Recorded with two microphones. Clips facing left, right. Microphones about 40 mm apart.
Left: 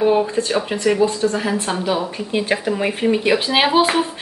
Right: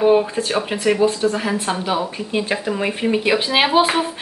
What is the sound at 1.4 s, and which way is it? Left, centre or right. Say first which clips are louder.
Speech: left 1 dB; centre.